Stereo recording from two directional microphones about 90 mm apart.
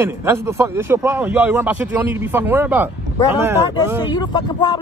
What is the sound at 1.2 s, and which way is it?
Speech, 15° right (ahead or behind).